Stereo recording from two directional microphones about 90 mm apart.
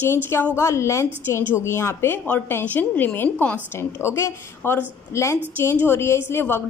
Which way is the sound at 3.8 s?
30° left (ahead or behind).